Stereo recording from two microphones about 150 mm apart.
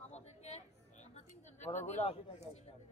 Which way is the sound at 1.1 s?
50° left (ahead or behind).